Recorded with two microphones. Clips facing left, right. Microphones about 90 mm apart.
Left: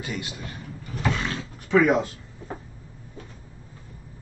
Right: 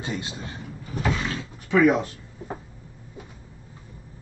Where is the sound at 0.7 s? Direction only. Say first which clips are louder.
Even; 5° right (ahead or behind).